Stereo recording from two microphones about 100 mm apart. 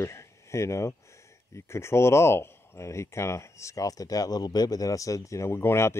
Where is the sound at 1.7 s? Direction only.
25° left (ahead or behind).